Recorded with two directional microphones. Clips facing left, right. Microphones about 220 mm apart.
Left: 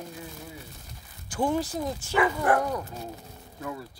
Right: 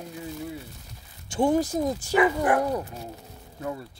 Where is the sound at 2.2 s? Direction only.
15° right (ahead or behind).